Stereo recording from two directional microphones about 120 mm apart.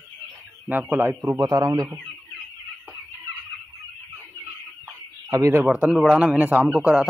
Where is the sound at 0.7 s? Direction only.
15° right (ahead or behind).